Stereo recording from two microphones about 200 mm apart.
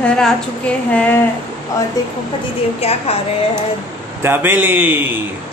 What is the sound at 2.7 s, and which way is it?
Speech, 30° left (ahead or behind).